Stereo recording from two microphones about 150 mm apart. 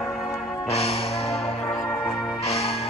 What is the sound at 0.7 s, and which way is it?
Music, 40° left (ahead or behind).